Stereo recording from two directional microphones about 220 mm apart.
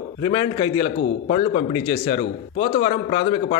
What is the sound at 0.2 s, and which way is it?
A man's voice, 20° left (ahead or behind).